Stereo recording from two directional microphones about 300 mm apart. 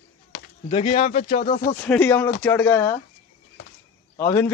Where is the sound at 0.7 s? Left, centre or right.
Left.